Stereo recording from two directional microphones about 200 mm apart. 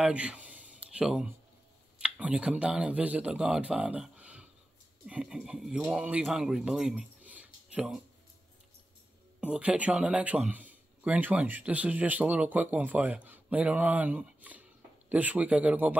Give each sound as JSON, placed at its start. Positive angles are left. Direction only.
{"t": 0.0, "sound": "a sound", "side_deg": -5}
{"t": 2.0, "sound": "speech", "side_deg": -5}
{"t": 9.4, "sound": "speech", "side_deg": -5}